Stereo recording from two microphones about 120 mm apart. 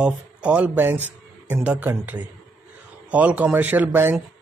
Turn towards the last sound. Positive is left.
turn(degrees=-15)  # may be behind; listen again after turning